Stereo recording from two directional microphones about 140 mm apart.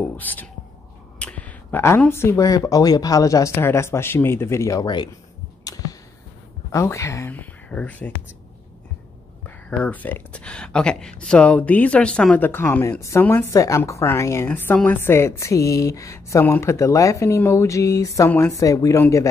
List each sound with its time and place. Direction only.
0.0 s speech: 10° left (ahead or behind); by 5.1 s 30° left (ahead or behind)
5.6 s a sound: 25° left (ahead or behind)
6.7 s speech: 20° left (ahead or behind)
9.7 s speech: 10° left (ahead or behind)